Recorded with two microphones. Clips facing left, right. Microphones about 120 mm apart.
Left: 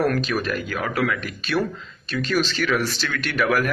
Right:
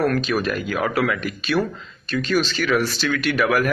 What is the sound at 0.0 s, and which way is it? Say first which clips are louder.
Speech: right 1 dB; 5° left (ahead or behind).